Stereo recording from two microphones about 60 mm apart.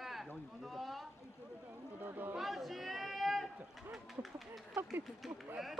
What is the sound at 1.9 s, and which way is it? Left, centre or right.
Speech, right.